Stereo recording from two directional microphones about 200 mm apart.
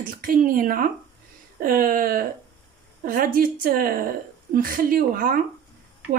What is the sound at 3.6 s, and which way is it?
A woman's voice, 45° right (ahead or behind).